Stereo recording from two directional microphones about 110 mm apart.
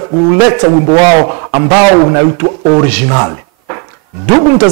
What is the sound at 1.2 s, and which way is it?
Speech, 25° right (ahead or behind).